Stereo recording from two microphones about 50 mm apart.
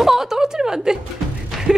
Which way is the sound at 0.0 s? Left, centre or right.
Centre.